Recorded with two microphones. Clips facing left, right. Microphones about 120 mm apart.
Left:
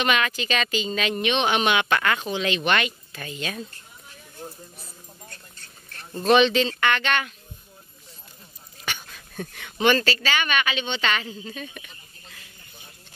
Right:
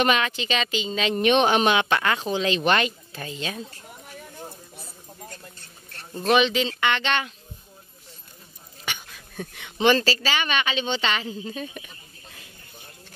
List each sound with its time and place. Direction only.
0.0 s a woman's voice: 30° right (ahead or behind)
1.2 s speech: 40° right (ahead or behind)
4.1 s a sound: 75° right (ahead or behind)
6.1 s speech: 10° right (ahead or behind)
8.9 s a sound: 15° right (ahead or behind)
9.6 s a woman's voice: 25° right (ahead or behind)